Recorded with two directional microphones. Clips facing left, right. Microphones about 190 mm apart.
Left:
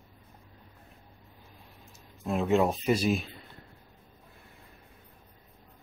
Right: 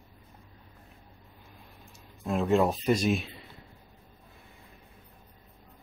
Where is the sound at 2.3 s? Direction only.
Centre (ahead or behind).